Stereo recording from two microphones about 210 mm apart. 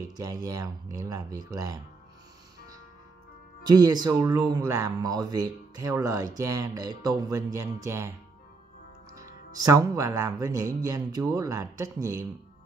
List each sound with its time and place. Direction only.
0.2 s speech: 15° right (ahead or behind)
3.6 s speech: 20° right (ahead or behind)
9.1 s speech: 15° right (ahead or behind)